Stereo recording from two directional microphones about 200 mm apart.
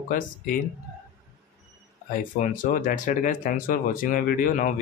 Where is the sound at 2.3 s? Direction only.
45° left (ahead or behind).